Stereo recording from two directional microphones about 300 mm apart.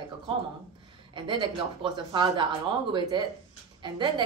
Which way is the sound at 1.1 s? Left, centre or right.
Centre.